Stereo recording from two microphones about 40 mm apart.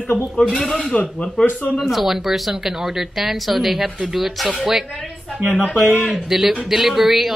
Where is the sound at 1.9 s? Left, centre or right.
Centre.